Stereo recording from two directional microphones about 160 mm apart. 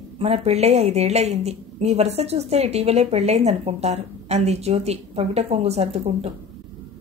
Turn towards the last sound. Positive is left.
turn(degrees=-40)  # may be behind; listen again after turning